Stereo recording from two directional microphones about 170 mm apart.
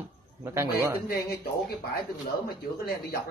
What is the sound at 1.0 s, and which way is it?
Speech, 65° left (ahead or behind).